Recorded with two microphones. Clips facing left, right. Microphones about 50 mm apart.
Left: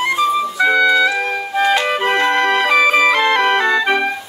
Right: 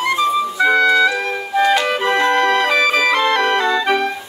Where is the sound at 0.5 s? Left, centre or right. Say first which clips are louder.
Even; centre.